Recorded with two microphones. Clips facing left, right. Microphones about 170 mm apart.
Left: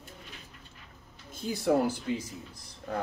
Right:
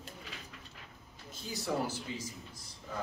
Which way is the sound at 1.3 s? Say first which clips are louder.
Left 9 dB; 55° left (ahead or behind).